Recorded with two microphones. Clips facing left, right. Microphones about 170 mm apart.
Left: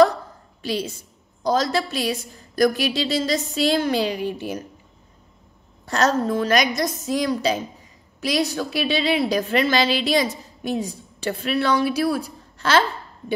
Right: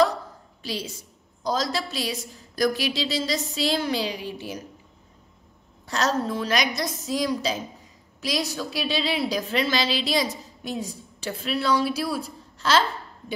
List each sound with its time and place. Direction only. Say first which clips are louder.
0.6 s a woman's voice: left 6 dB; 55° left (ahead or behind)
5.9 s a woman's voice: left 5 dB; 50° left (ahead or behind)